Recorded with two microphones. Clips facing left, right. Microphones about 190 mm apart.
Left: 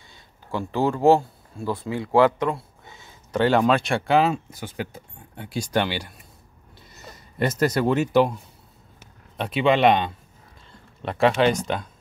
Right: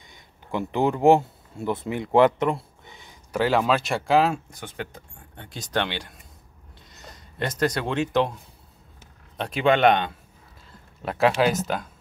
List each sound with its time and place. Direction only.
0.1 s speech: 20° right (ahead or behind)
3.3 s speech: centre (ahead or behind)
9.4 s speech: centre (ahead or behind)